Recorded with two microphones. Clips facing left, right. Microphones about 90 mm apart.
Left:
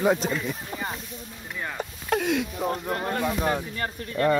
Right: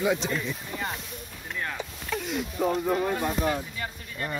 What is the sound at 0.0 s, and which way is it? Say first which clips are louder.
Speech: left 3 dB; 40° left (ahead or behind).